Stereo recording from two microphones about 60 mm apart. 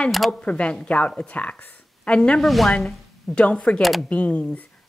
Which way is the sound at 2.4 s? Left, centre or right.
Centre.